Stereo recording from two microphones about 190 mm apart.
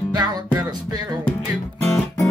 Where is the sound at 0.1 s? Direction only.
20° right (ahead or behind).